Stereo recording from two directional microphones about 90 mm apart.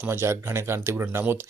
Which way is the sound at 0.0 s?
25° right (ahead or behind).